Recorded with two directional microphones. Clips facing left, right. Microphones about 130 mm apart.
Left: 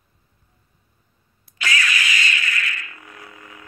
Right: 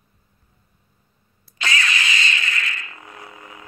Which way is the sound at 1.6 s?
25° right (ahead or behind).